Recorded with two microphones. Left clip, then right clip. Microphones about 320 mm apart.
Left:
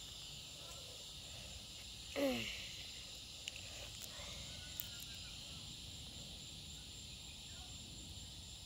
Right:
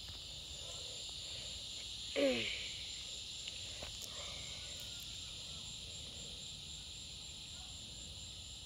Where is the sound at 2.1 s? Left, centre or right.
Centre.